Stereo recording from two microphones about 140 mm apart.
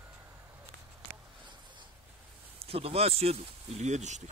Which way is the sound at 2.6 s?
45° right (ahead or behind).